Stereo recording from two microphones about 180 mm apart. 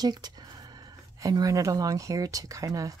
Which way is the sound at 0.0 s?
20° right (ahead or behind).